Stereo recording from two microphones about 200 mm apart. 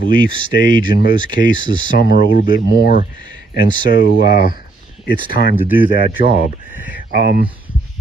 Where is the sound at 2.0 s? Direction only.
45° left (ahead or behind).